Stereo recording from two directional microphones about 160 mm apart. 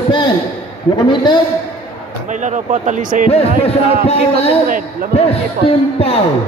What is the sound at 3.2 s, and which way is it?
A man's voice, 40° left (ahead or behind).